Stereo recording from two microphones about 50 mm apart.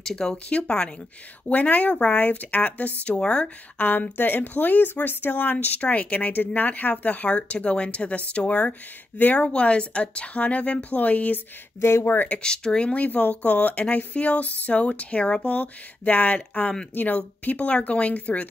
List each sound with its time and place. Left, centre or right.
0.0 s speech: centre; by 9.5 s left
9.5 s speech: left
11.8 s speech: left
12.3 s speech: centre
12.9 s speech: left